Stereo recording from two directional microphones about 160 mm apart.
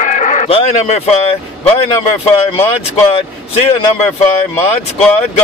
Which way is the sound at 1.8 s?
35° left (ahead or behind).